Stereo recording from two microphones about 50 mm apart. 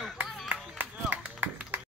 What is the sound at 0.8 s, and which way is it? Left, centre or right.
Music, right.